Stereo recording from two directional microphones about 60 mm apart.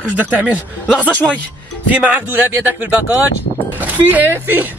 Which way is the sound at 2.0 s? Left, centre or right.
Right.